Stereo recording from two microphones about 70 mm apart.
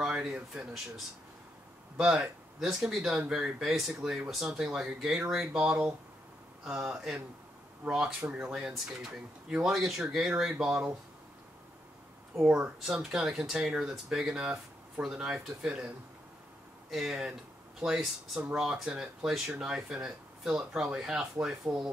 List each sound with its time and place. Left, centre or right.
0.1 s speech: centre
2.0 s speech: centre
12.4 s speech: centre
12.8 s speech: centre
16.9 s speech: centre